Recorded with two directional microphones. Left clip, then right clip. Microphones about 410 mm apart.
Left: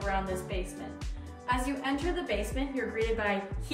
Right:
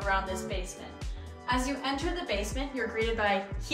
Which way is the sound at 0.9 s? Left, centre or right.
Centre.